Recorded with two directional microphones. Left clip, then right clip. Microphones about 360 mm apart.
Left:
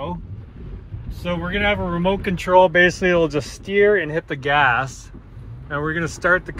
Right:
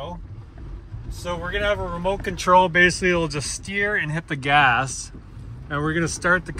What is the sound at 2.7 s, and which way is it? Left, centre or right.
Speech, centre.